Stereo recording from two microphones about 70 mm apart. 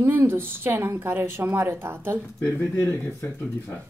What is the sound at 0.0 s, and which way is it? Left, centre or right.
Speech, right.